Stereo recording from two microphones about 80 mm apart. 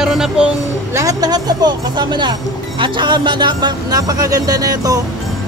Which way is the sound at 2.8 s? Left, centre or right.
Right.